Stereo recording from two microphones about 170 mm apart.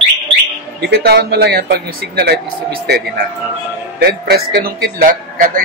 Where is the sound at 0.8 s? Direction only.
70° right (ahead or behind).